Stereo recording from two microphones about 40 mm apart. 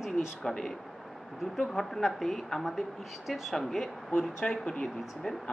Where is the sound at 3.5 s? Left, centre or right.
Centre.